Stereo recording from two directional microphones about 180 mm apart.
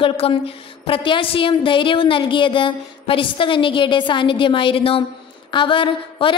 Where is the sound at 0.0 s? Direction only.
30° left (ahead or behind).